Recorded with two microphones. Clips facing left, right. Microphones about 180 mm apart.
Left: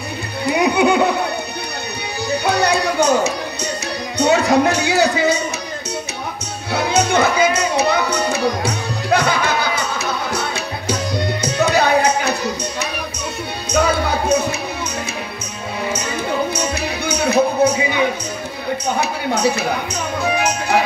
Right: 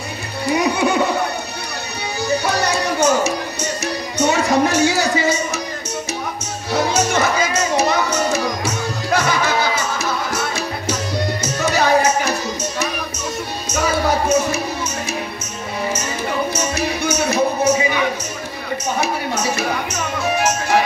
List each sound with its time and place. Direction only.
0.5 s music: 60° left (ahead or behind)
2.2 s music: 60° left (ahead or behind)
6.7 s music: 60° left (ahead or behind)
11.4 s tabla: 60° left (ahead or behind)
13.7 s music: 60° left (ahead or behind)
16.7 s music: 60° left (ahead or behind)